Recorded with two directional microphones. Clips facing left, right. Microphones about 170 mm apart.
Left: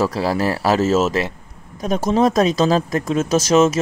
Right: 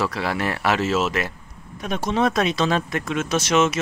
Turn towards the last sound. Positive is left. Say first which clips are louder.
# left 5 dB
turn(degrees=40)  # may be behind; listen again after turning